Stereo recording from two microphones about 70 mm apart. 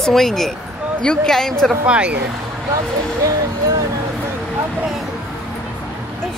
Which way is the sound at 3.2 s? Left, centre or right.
Right.